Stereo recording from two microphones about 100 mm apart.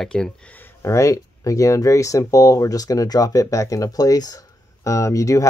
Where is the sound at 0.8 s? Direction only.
30° left (ahead or behind).